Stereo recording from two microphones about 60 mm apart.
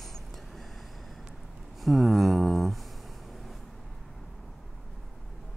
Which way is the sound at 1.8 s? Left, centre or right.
Centre.